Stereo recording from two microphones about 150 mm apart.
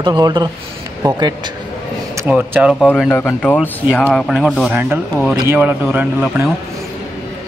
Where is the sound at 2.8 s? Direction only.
5° left (ahead or behind); by 6.5 s 10° right (ahead or behind).